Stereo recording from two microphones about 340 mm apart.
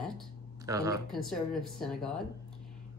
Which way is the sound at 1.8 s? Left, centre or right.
Centre.